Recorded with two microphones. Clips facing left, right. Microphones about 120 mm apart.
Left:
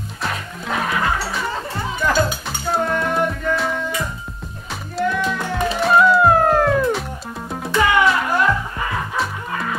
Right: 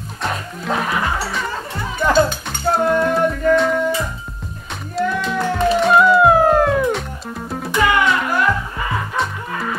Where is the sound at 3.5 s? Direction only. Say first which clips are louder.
Right 6 dB; 5° left (ahead or behind).